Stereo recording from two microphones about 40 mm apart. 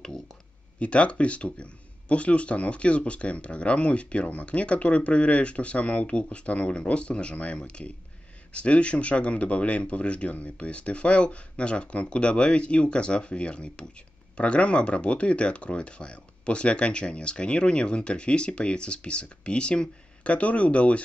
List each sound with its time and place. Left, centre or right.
0.7 s speech: left